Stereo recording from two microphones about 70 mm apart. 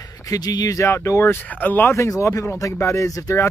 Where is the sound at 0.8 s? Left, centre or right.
Left.